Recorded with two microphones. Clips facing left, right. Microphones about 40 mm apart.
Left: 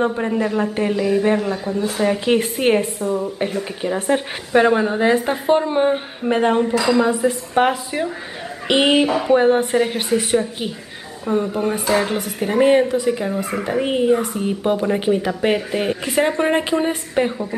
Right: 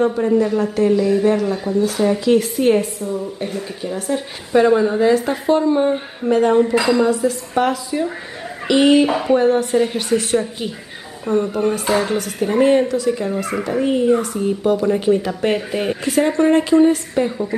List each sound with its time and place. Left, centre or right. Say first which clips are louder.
0.0 s a woman's voice: right 3 dB; left
9.0 s speech: right 1 dB; centre
9.3 s a woman's voice: left 2 dB; left
10.0 s a woman's voice: even; centre
16.1 s a woman's voice: right 4 dB; centre